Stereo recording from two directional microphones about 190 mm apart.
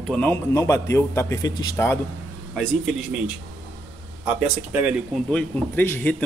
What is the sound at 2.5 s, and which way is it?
Speech, centre (ahead or behind).